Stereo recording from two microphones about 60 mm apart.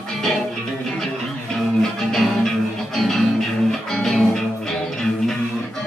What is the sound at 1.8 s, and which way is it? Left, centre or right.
Music, centre.